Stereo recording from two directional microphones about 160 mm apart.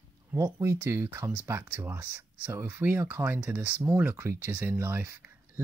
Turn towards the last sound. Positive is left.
turn(degrees=-15)  # may be behind; listen again after turning